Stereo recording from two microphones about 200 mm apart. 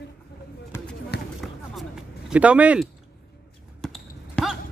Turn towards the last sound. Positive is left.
turn(degrees=0)  # may be behind; listen again after turning